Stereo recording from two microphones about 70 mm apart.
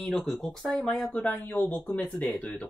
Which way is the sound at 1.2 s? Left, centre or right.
Left.